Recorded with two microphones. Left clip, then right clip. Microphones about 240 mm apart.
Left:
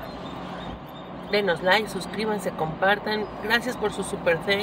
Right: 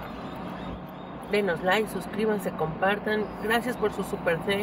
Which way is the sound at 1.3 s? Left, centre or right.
Centre.